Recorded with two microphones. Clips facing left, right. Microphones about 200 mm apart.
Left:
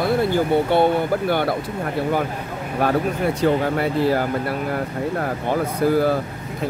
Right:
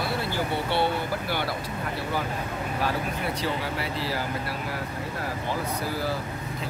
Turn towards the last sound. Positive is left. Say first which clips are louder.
# left 11 dB
turn(degrees=55)  # may be behind; listen again after turning